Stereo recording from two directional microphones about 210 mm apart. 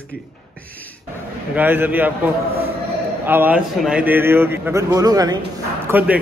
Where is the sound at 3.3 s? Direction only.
10° right (ahead or behind).